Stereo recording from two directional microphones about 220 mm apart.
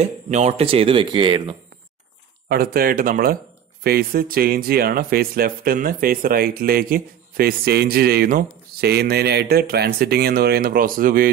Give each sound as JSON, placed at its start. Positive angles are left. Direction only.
{"t": 0.3, "sound": "speech", "side_deg": -30}
{"t": 2.4, "sound": "speech", "side_deg": -45}